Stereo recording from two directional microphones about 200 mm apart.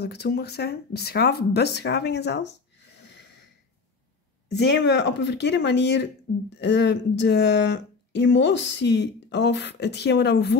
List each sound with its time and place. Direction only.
0.0 s speech: 55° left (ahead or behind)
4.6 s speech: 60° left (ahead or behind)